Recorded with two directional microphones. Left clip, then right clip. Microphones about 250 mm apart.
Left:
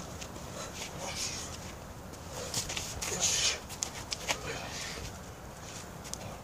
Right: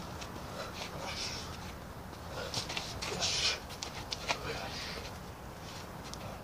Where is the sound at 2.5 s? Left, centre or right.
Centre.